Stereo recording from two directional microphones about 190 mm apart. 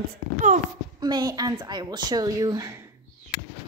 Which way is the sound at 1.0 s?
20° right (ahead or behind).